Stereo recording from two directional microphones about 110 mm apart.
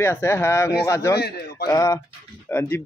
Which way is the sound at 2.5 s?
20° left (ahead or behind).